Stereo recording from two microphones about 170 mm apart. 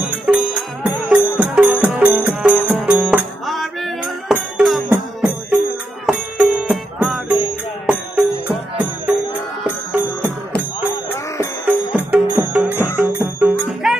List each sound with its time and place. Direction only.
0.0 s music: centre (ahead or behind)
11.6 s music: 10° right (ahead or behind)
12.7 s music: 15° left (ahead or behind)
13.0 s music: 5° right (ahead or behind)